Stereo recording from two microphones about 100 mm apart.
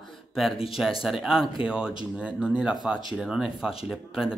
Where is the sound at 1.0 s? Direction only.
5° right (ahead or behind).